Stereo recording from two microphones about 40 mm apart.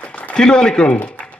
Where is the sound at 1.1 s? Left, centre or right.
Left.